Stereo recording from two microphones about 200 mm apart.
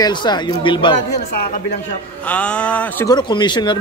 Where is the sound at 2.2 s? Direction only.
5° left (ahead or behind).